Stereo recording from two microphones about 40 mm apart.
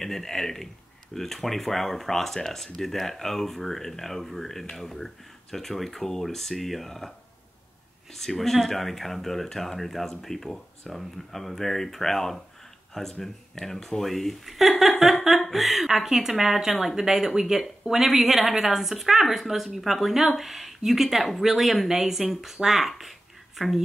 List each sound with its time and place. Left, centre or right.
0.0 s a woman's voice: centre